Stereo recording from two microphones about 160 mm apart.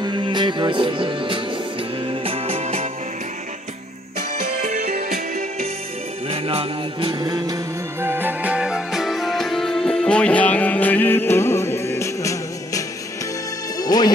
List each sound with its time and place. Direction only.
0.0 s music: 30° right (ahead or behind)
4.4 s music: 60° right (ahead or behind)
6.2 s music: 35° right (ahead or behind); by 14.1 s 25° left (ahead or behind)